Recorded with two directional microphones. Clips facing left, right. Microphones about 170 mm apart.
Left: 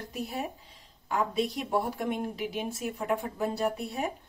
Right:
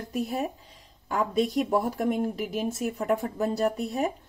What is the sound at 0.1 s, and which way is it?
A woman's voice, 40° right (ahead or behind).